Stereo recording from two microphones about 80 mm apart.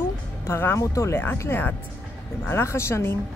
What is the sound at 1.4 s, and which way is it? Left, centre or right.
Speech, left.